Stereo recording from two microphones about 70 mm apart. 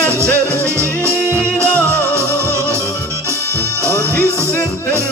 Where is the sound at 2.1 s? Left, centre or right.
Right.